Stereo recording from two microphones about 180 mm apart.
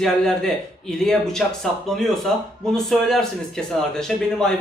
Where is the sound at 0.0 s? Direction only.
5° left (ahead or behind).